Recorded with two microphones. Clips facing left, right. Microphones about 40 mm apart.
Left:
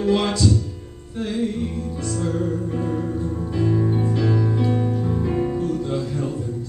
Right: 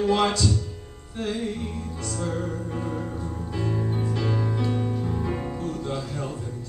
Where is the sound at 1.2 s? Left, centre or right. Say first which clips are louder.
Left 4 dB; centre.